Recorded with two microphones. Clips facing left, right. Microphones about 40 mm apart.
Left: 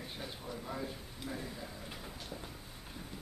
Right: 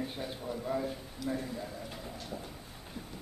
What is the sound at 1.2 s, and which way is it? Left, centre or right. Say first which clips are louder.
Speech: right 8 dB; left.